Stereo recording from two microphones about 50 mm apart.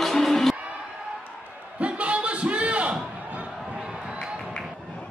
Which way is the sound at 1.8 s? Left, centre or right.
Right.